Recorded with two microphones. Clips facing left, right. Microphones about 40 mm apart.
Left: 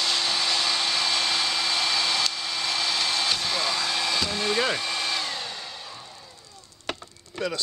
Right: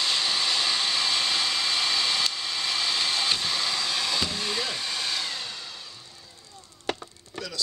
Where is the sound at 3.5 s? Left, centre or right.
Centre.